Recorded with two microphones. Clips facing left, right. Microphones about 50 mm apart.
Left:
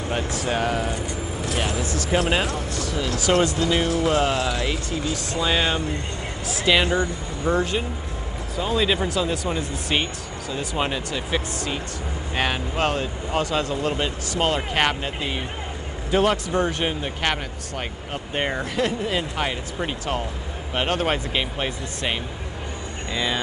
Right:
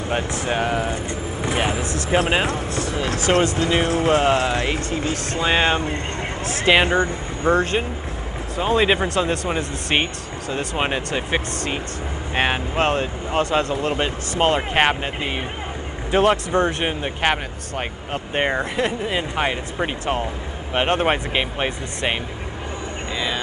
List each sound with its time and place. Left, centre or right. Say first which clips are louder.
0.1 s speech: right 2 dB; right
0.6 s speech: right 2 dB; centre; by 5.4 s right
5.4 s speech: right 4 dB; right
6.7 s speech: right 3 dB; right
11.1 s speech: right 3 dB; right
23.1 s speech: left 1 dB; centre